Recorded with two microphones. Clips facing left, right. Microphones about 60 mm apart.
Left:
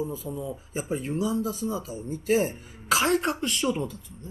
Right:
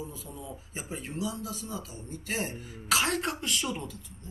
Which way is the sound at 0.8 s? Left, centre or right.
Centre.